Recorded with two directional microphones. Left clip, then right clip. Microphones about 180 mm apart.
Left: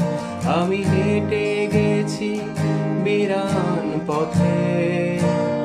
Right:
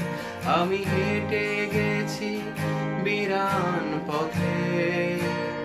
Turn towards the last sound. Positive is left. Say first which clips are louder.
# left 4 dB
turn(degrees=20)  # may be behind; listen again after turning